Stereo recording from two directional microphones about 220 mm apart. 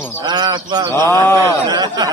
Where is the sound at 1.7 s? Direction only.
20° right (ahead or behind).